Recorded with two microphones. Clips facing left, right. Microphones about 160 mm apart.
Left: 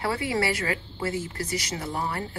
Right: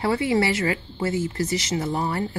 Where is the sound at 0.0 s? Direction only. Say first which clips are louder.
Right 5 dB; 25° right (ahead or behind).